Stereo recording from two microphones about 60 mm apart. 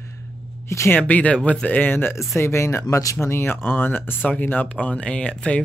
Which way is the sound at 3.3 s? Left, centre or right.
Left.